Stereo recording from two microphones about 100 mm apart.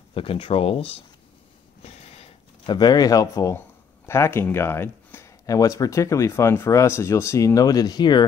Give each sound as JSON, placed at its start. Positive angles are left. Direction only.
{"t": 0.1, "sound": "speech", "side_deg": 65}
{"t": 1.8, "sound": "a sound", "side_deg": 90}
{"t": 2.6, "sound": "speech", "side_deg": 45}
{"t": 5.5, "sound": "speech", "side_deg": 35}